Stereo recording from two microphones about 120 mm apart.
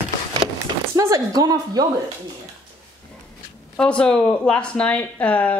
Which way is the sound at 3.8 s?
10° left (ahead or behind).